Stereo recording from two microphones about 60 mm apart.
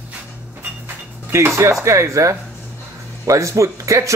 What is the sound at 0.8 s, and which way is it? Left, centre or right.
Speech, right.